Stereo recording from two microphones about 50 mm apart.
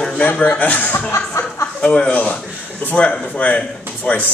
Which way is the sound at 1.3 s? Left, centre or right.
Left.